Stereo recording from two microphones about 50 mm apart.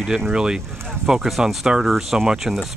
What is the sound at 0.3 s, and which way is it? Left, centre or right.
Speech, centre.